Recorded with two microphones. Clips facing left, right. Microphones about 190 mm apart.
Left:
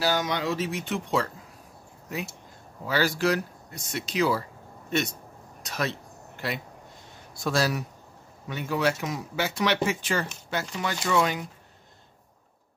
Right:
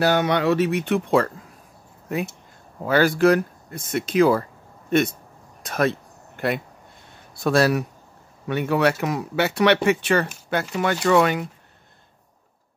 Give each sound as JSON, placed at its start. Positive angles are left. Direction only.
{"t": 0.0, "sound": "speech", "side_deg": -60}
{"t": 5.6, "sound": "a sound", "side_deg": -55}
{"t": 7.3, "sound": "speech", "side_deg": -60}